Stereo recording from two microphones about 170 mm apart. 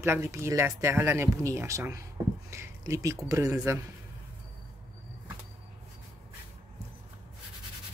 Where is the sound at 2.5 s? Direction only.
15° right (ahead or behind).